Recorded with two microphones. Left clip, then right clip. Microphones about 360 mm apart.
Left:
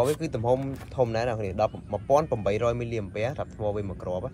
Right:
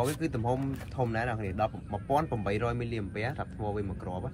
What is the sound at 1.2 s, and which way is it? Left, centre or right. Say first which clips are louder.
Speech: left 5 dB; centre.